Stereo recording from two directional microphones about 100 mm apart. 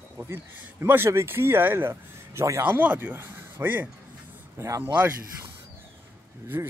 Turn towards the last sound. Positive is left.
turn(degrees=-20)  # may be behind; listen again after turning